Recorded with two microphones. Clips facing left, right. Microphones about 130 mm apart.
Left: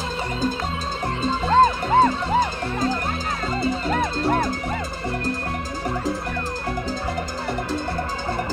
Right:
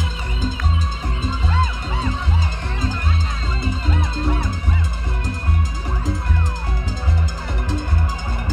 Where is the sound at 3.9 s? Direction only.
55° left (ahead or behind).